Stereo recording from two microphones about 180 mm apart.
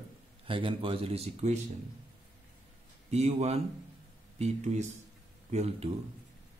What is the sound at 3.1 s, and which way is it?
Speech, 35° right (ahead or behind).